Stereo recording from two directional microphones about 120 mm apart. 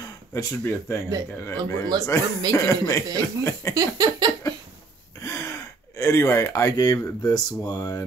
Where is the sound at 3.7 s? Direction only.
35° right (ahead or behind).